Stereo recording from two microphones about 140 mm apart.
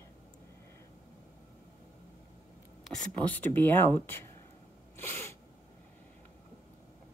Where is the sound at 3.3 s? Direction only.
15° left (ahead or behind).